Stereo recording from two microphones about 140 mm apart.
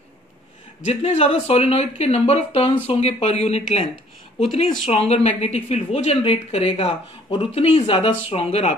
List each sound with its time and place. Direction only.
0.8 s speech: 45° left (ahead or behind)